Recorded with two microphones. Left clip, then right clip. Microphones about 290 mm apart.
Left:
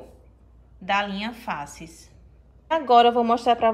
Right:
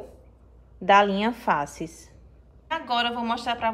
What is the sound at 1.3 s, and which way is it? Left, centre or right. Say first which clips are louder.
Speech: right 7 dB; centre.